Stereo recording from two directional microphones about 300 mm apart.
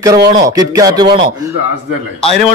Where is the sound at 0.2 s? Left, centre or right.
Right.